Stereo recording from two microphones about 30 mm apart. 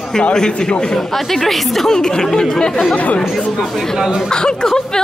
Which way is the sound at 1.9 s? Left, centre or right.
Left.